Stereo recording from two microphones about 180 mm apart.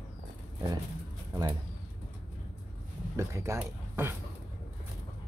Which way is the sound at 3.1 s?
15° right (ahead or behind).